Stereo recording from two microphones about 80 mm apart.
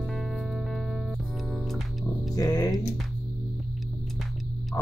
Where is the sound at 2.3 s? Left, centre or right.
Left.